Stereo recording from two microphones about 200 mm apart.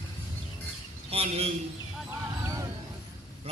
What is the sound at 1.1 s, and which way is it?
Speech, 30° right (ahead or behind).